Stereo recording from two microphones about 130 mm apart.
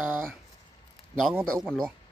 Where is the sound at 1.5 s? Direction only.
5° left (ahead or behind).